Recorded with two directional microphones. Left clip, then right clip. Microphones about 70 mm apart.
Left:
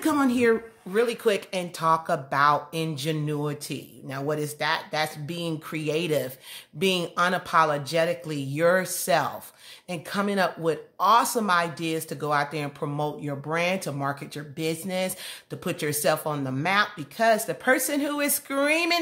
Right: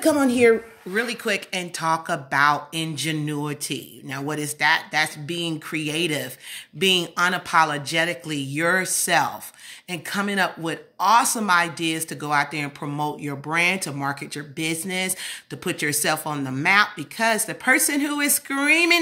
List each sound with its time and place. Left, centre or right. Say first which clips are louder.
0.0 s a woman's voice: right 5 dB; left
1.5 s speech: even; left